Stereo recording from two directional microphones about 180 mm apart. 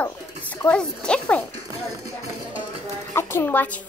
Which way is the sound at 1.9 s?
20° right (ahead or behind).